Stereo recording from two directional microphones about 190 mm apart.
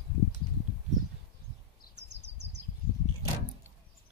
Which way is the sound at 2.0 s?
65° right (ahead or behind).